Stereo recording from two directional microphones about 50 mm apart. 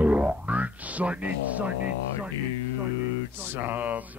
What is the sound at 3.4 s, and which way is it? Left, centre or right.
Speech, right.